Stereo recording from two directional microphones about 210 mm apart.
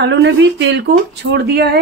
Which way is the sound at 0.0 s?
60° right (ahead or behind).